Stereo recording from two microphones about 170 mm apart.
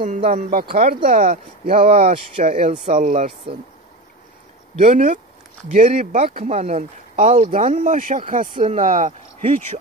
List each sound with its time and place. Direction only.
0.3 s speech: 55° right (ahead or behind)
1.8 s speech: 35° right (ahead or behind)
4.7 s speech: 45° right (ahead or behind)